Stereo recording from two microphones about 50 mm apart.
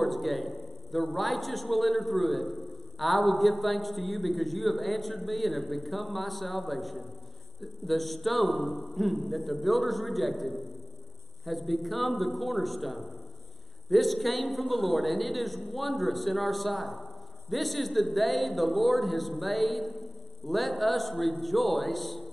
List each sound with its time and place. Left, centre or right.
0.0 s a man's voice: centre